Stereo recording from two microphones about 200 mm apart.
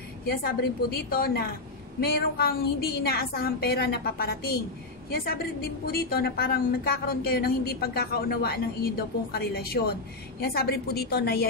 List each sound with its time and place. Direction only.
0.4 s a woman's voice: 50° left (ahead or behind)
5.9 s a woman's voice: 50° left (ahead or behind)